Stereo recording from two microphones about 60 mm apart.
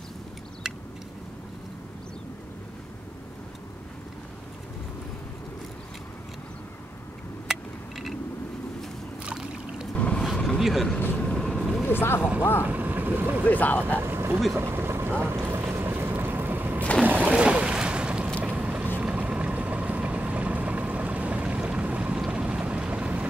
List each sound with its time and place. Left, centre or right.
9.2 s boat: centre
9.9 s a sound: left
10.3 s vehicle: centre
10.6 s vehicle: centre
11.8 s a sound: left
12.2 s speech: centre
13.5 s speech: left
14.0 s vehicle: right
14.5 s boat: right
15.7 s a sound: right
17.0 s boat: right
18.4 s vehicle: right